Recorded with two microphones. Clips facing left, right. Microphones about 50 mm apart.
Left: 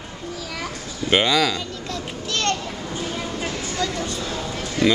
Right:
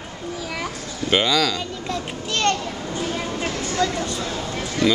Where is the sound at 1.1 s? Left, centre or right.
Centre.